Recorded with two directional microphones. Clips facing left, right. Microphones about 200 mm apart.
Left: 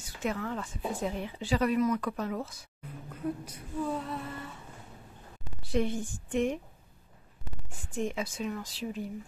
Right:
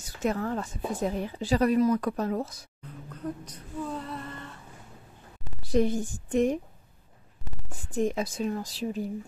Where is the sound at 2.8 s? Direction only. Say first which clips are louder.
Left 1 dB; 10° left (ahead or behind).